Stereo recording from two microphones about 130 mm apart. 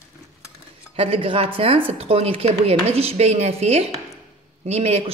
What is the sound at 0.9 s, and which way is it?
Speech, 45° right (ahead or behind).